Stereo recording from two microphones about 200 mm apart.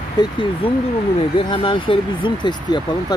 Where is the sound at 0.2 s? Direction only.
20° left (ahead or behind).